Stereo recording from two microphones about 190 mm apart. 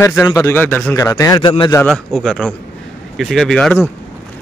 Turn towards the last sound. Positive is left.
turn(degrees=5)  # may be behind; listen again after turning